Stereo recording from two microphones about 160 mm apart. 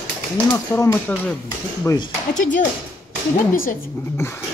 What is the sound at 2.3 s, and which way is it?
Speech, 55° left (ahead or behind).